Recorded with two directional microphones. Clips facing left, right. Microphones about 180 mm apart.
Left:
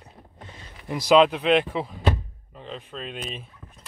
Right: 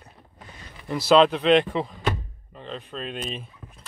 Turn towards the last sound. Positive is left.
turn(degrees=5)  # may be behind; listen again after turning